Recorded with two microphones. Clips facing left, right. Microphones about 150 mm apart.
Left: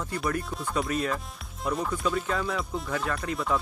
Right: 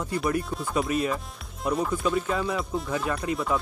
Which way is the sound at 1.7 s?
Centre (ahead or behind).